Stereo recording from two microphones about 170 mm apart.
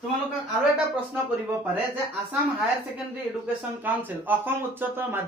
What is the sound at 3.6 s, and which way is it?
Speech, 10° right (ahead or behind).